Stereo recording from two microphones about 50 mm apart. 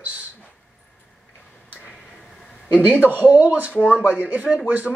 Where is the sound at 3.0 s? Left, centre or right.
Right.